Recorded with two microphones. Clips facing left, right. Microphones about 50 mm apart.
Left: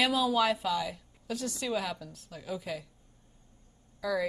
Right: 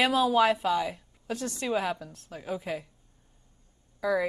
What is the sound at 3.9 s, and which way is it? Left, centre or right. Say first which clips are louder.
Speech: right 4 dB; right.